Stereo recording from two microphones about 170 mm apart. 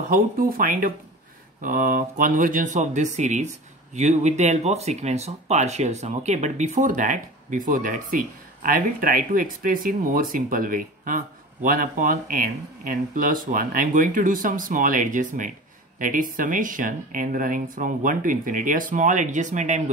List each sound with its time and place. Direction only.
0.1 s speech: 55° right (ahead or behind)